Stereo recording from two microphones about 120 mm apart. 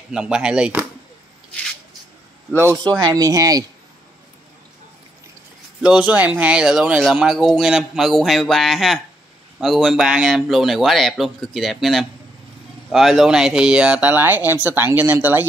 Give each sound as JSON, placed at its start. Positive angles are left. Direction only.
{"t": 0.1, "sound": "speech", "side_deg": -5}
{"t": 2.5, "sound": "speech", "side_deg": -20}
{"t": 5.8, "sound": "speech", "side_deg": -10}